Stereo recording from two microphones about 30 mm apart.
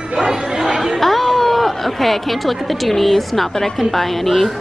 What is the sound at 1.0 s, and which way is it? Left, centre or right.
Speech, centre.